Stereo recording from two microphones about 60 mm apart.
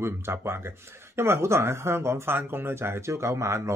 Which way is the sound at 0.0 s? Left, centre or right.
Right.